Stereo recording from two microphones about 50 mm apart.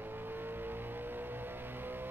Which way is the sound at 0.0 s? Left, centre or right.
Right.